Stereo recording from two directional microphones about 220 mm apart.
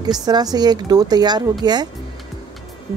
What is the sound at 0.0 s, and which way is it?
Speech, 20° right (ahead or behind).